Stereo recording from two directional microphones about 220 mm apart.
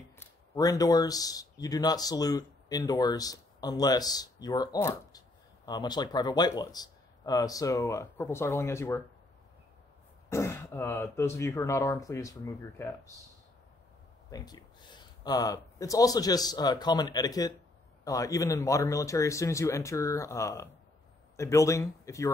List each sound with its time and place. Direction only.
0.2 s speech: 15° left (ahead or behind)
10.3 s speech: 10° left (ahead or behind)
14.3 s speech: 15° left (ahead or behind)